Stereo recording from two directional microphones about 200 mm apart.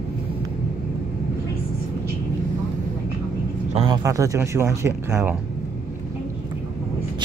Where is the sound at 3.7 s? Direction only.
25° right (ahead or behind).